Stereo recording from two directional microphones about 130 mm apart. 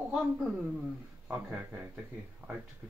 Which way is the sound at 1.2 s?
15° right (ahead or behind).